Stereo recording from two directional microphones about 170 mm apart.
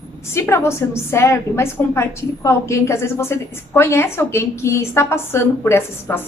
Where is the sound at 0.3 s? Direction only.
15° left (ahead or behind).